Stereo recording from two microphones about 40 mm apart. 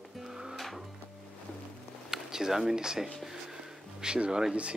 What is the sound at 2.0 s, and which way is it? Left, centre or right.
Speech, centre.